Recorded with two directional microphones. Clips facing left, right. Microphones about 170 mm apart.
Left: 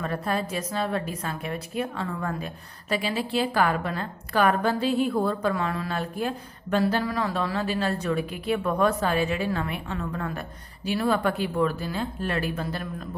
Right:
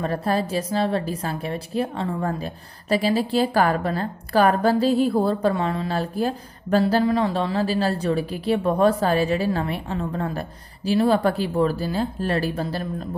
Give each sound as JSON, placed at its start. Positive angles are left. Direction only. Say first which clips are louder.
{"t": 0.0, "sound": "a woman's voice", "louder": "right 5 dB", "side_deg": -35}
{"t": 6.8, "sound": "a woman's voice", "louder": "right 6 dB", "side_deg": -25}